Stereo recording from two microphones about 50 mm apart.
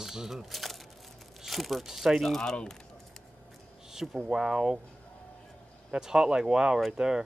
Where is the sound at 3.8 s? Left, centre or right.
Centre.